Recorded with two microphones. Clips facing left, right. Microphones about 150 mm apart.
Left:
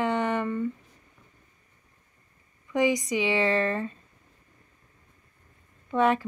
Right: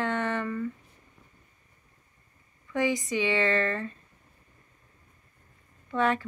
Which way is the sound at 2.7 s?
20° left (ahead or behind).